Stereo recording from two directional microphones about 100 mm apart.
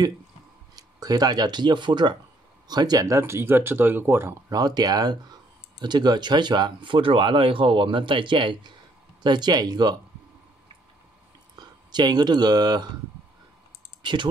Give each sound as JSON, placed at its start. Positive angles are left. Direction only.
{"t": 0.7, "sound": "speech", "side_deg": -40}
{"t": 3.2, "sound": "speech", "side_deg": -25}
{"t": 4.5, "sound": "speech", "side_deg": -40}
{"t": 11.5, "sound": "speech", "side_deg": -45}